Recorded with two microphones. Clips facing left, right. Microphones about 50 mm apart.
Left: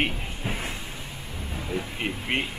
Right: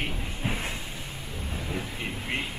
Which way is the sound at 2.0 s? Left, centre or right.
Left.